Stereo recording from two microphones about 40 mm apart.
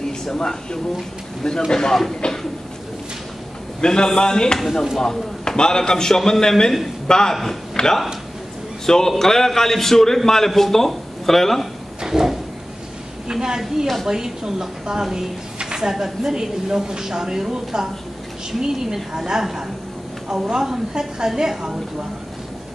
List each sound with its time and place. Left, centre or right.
0.3 s a man's voice: centre
2.2 s a sound: left
3.8 s a man's voice: centre
7.7 s a sound: centre
8.8 s a man's voice: centre
12.0 s drawer open or close: centre
13.3 s a woman's voice: centre